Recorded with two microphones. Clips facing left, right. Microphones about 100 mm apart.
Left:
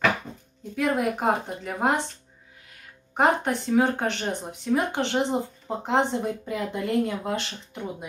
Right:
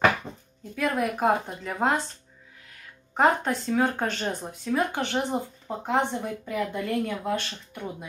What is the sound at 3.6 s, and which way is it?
Speech, 20° left (ahead or behind).